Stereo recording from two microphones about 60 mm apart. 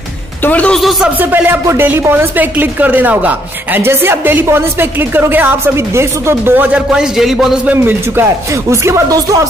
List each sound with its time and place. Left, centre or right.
0.5 s a man's voice: left
1.3 s a woman's voice: right
3.8 s a woman's voice: right
5.9 s speech: right
6.5 s a man's voice: right
6.9 s a man's voice: centre
7.6 s a woman's voice: right
8.6 s speech: right
9.1 s music: right